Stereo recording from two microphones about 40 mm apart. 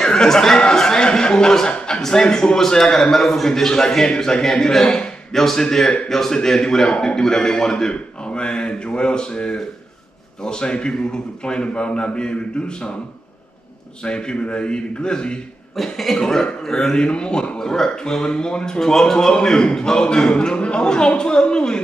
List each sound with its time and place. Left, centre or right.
0.0 s a sound: centre
2.0 s a man's voice: centre
7.9 s a man's voice: left
14.0 s a man's voice: left
15.7 s a man's voice: centre; by 21.8 s left